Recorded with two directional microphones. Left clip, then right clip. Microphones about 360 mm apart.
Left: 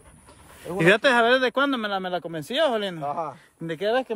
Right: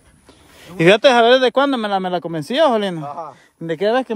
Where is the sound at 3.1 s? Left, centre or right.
Left.